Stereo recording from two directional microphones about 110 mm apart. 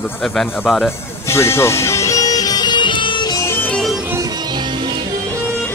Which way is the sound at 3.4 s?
20° left (ahead or behind).